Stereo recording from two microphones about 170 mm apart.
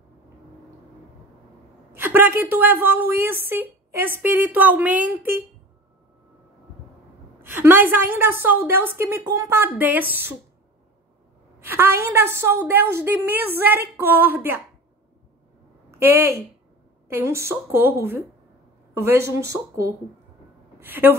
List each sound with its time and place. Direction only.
1.9 s a woman's voice: 15° right (ahead or behind)
7.6 s a woman's voice: 10° right (ahead or behind)
11.6 s a woman's voice: 15° right (ahead or behind)
16.1 s a woman's voice: 15° right (ahead or behind)